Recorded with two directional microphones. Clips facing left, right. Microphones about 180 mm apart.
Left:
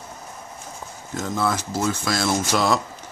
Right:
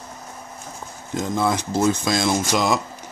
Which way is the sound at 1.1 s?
15° right (ahead or behind).